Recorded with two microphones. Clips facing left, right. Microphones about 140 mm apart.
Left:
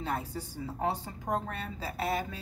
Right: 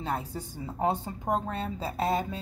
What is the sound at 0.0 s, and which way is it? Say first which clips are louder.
A woman's voice: right 2 dB; 20° right (ahead or behind).